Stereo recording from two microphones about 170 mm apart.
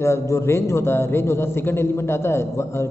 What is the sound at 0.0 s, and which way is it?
A man's voice, 15° left (ahead or behind).